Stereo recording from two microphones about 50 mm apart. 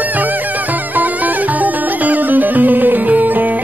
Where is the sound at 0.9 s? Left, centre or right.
Right.